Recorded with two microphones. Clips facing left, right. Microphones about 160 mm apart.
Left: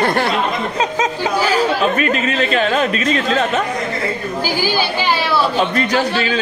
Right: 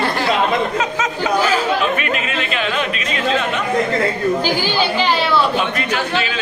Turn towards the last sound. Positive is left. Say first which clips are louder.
# left 3 dB
turn(degrees=35)  # may be behind; listen again after turning